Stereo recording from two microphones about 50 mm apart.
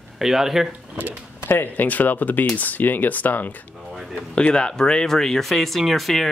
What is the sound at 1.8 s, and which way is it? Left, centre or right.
Speech, left.